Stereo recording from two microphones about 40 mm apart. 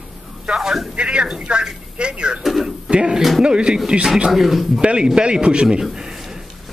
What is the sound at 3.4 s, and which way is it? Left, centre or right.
Speech, right.